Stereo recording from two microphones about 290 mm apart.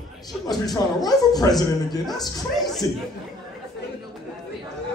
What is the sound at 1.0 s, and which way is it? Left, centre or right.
Speech, centre.